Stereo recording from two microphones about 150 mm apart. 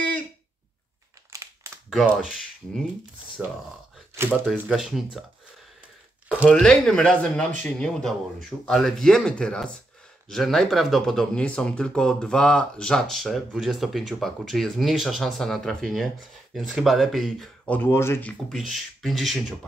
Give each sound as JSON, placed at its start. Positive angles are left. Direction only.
{"t": 1.3, "sound": "crumpling", "side_deg": -20}
{"t": 1.9, "sound": "speech", "side_deg": 0}
{"t": 6.6, "sound": "speech", "side_deg": 5}
{"t": 17.8, "sound": "speech", "side_deg": 15}
{"t": 18.5, "sound": "speech", "side_deg": 0}